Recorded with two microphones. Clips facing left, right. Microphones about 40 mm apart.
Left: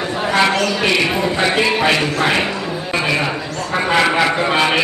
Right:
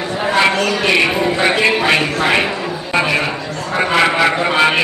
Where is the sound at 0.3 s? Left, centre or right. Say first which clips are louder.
Right 1 dB; centre.